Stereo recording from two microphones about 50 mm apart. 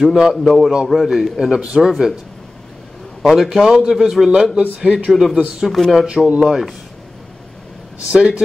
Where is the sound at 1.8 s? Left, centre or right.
Centre.